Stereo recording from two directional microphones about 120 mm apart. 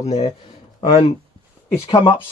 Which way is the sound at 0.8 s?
55° left (ahead or behind).